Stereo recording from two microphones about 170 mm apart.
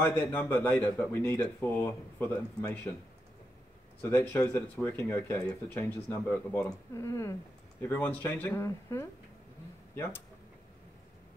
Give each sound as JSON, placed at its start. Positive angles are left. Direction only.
{"t": 0.0, "sound": "a man's voice", "side_deg": 10}
{"t": 4.0, "sound": "a man's voice", "side_deg": 10}
{"t": 7.0, "sound": "a man's voice", "side_deg": 20}